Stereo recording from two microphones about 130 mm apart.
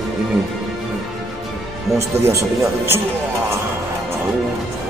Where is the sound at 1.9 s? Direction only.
20° right (ahead or behind).